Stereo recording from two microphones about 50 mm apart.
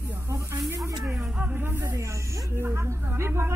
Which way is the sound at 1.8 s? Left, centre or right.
Right.